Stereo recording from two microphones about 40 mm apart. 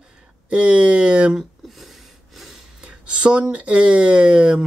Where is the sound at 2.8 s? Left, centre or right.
Right.